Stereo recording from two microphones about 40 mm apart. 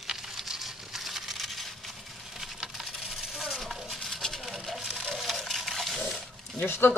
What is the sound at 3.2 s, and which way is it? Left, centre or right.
Coin, centre.